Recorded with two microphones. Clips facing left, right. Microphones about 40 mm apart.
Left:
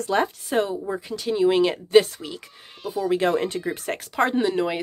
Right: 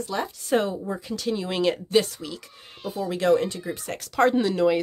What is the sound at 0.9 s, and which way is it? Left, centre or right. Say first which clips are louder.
Speech: left 1 dB; centre.